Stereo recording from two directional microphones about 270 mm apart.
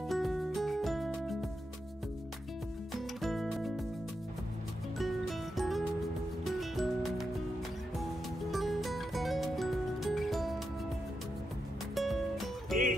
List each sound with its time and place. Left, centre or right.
0.1 s music: centre
2.9 s music: centre
4.9 s music: centre
8.5 s music: centre
11.9 s music: centre